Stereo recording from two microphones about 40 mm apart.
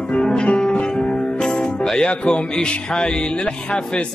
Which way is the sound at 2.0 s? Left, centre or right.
Left.